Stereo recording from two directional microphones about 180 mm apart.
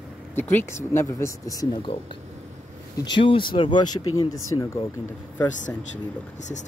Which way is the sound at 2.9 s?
25° left (ahead or behind).